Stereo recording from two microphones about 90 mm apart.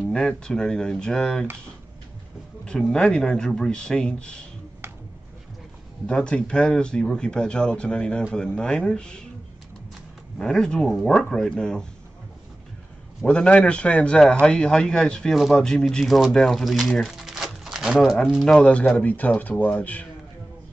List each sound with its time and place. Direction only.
0.1 s speech: 10° left (ahead or behind)
2.6 s speech: 10° left (ahead or behind)
6.0 s speech: 10° left (ahead or behind)
10.4 s speech: 5° left (ahead or behind)
13.2 s a man's voice: 10° left (ahead or behind)
18.9 s speech: 20° left (ahead or behind)